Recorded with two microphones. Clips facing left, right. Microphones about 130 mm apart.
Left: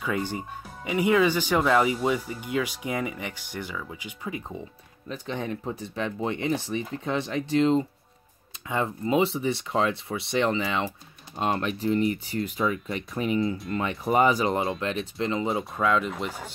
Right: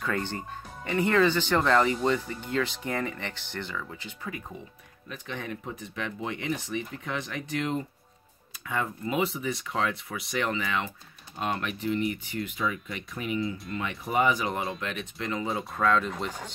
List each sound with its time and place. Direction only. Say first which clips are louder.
0.0 s speech: left 2 dB; 10° left (ahead or behind)
5.0 s speech: left 5 dB; 30° left (ahead or behind)
15.8 s speech: even; 5° left (ahead or behind)